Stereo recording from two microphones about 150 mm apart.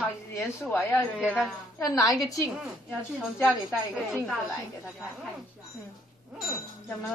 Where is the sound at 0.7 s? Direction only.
15° left (ahead or behind).